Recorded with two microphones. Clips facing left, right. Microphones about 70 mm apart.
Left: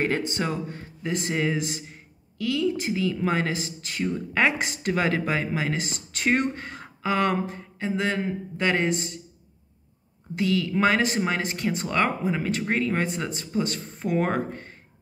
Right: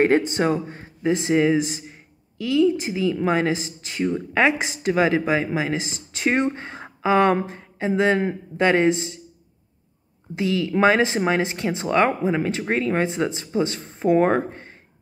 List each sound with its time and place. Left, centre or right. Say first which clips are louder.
0.0 s speech: right 8 dB; right
10.3 s speech: right 2 dB; right